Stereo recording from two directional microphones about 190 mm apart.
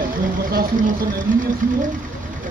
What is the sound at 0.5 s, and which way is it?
Speech, 55° right (ahead or behind).